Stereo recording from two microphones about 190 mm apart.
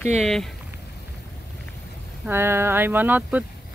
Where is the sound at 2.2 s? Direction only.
10° right (ahead or behind).